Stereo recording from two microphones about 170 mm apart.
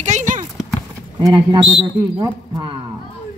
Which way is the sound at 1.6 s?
35° right (ahead or behind).